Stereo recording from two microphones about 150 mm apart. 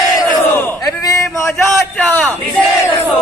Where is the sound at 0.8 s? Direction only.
25° left (ahead or behind).